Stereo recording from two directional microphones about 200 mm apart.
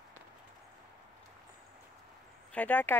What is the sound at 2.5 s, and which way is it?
Speech, 10° left (ahead or behind).